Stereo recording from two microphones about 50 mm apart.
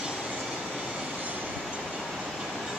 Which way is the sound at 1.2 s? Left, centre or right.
Right.